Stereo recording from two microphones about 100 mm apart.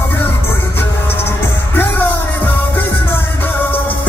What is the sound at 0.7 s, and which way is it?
Music, 20° left (ahead or behind).